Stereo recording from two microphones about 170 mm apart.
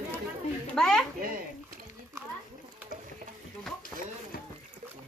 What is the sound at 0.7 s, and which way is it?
Speech, 5° left (ahead or behind).